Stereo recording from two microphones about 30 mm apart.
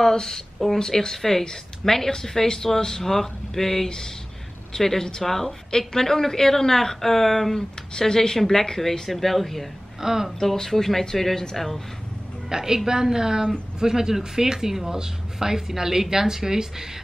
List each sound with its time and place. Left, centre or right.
0.0 s a woman's voice: centre
8.0 s a woman's voice: centre
9.9 s speech: centre
10.4 s a woman's voice: centre
12.4 s a woman's voice: centre